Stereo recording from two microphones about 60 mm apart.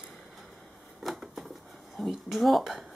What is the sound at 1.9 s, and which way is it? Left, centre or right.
Speech, centre.